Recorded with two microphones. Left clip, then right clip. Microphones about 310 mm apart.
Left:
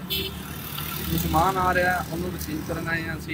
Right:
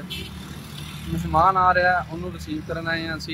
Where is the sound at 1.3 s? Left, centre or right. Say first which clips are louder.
Right 5 dB; centre.